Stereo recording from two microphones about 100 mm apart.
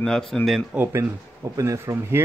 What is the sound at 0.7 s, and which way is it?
Speech, 25° right (ahead or behind).